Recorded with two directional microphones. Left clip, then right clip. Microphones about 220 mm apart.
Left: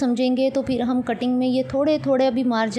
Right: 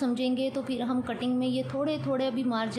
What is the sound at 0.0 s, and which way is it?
A woman's voice, 25° left (ahead or behind).